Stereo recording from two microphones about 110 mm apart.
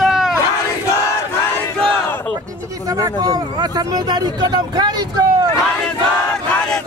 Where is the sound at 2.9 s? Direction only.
35° right (ahead or behind).